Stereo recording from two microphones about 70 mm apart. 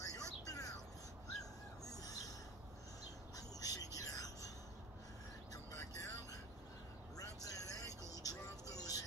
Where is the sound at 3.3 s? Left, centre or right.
Left.